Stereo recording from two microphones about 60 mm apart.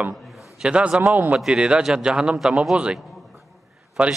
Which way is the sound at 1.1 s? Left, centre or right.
Right.